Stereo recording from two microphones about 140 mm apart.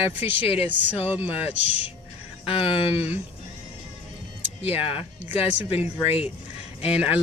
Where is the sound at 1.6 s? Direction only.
10° right (ahead or behind).